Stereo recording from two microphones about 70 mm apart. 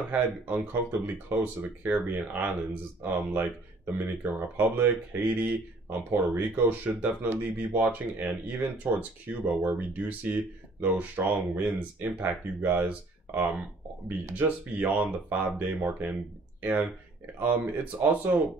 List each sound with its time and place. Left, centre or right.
0.1 s speech: right
17.4 s speech: right